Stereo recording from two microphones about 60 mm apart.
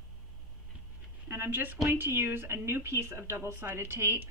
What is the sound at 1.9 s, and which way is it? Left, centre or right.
A woman's voice, right.